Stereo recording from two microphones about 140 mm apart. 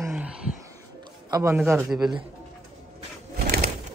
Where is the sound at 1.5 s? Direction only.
15° right (ahead or behind).